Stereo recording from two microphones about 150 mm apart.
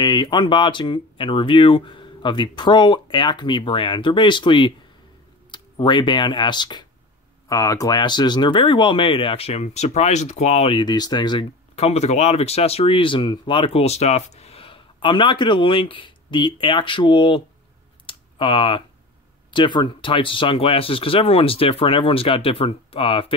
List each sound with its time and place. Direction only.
0.0 s speech: 30° left (ahead or behind)
11.7 s speech: 45° left (ahead or behind)
18.0 s a sound: 35° left (ahead or behind)
19.5 s speech: 30° left (ahead or behind)